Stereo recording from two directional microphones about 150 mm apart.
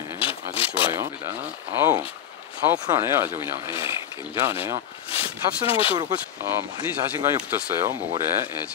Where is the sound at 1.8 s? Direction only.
15° right (ahead or behind).